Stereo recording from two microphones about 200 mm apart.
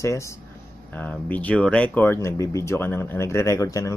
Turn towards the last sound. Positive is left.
turn(degrees=15)  # may be behind; listen again after turning